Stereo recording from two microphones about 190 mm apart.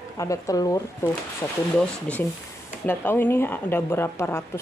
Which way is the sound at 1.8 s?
5° left (ahead or behind).